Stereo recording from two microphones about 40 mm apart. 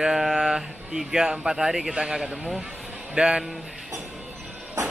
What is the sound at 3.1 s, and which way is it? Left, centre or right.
Speech, right.